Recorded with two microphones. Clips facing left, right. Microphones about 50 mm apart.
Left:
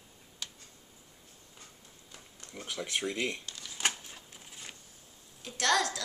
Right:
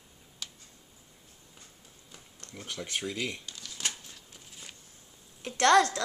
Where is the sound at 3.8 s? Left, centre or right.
Centre.